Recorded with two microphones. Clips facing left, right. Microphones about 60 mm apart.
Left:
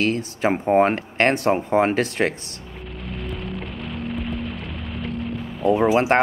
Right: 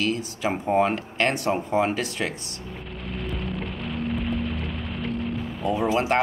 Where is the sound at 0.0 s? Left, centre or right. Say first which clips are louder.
Left 4 dB; left.